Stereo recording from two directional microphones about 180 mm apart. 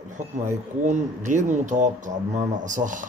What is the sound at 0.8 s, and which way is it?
Speech, 40° right (ahead or behind).